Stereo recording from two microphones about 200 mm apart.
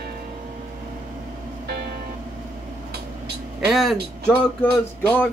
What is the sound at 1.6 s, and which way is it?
Music, 55° right (ahead or behind).